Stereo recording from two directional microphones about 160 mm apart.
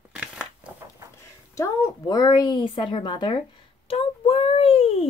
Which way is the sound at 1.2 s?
20° left (ahead or behind).